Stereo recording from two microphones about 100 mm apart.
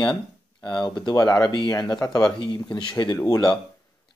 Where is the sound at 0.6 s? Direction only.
45° left (ahead or behind).